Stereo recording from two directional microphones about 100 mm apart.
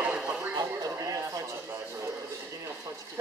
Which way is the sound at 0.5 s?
35° right (ahead or behind).